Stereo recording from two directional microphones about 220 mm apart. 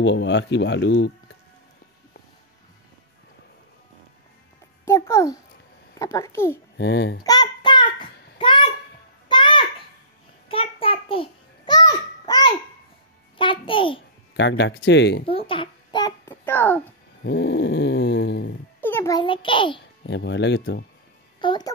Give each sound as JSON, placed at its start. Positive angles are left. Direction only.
{"t": 0.0, "sound": "speech", "side_deg": 55}
{"t": 4.8, "sound": "music", "side_deg": 10}
{"t": 5.9, "sound": "a child's voice", "side_deg": 15}
{"t": 6.8, "sound": "speech", "side_deg": 50}
{"t": 7.2, "sound": "child singing", "side_deg": 20}
{"t": 9.3, "sound": "a sound", "side_deg": 20}
{"t": 13.4, "sound": "a child's voice", "side_deg": 25}
{"t": 14.3, "sound": "speech", "side_deg": 50}
{"t": 15.2, "sound": "a child's voice", "side_deg": 25}
{"t": 16.4, "sound": "a child's voice", "side_deg": 10}
{"t": 17.2, "sound": "a sound", "side_deg": 50}
{"t": 18.8, "sound": "a child's voice", "side_deg": 10}
{"t": 20.1, "sound": "speech", "side_deg": 50}
{"t": 21.4, "sound": "a child's voice", "side_deg": 20}